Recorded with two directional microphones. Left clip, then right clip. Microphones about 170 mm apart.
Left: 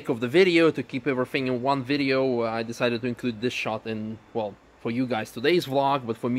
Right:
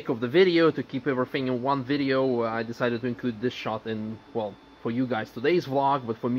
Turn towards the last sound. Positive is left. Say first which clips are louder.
# even
turn(degrees=15)  # may be behind; listen again after turning